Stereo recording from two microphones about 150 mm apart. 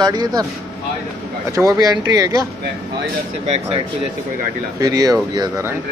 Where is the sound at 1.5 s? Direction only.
20° right (ahead or behind).